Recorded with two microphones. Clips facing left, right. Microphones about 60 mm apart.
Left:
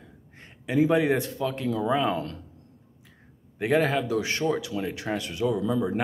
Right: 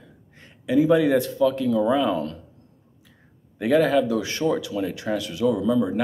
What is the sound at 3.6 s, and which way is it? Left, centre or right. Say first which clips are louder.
Speech: right 5 dB; left.